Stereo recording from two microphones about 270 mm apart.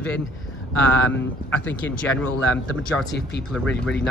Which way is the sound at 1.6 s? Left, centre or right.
Centre.